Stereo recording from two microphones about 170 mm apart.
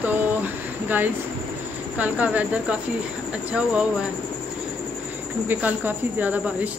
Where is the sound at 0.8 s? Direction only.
10° right (ahead or behind).